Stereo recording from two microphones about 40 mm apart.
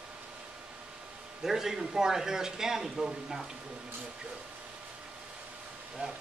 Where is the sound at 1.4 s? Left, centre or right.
Centre.